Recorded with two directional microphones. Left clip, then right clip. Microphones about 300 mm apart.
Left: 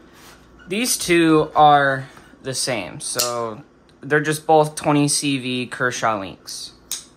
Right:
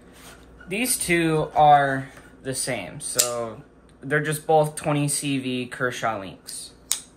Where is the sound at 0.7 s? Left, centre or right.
Centre.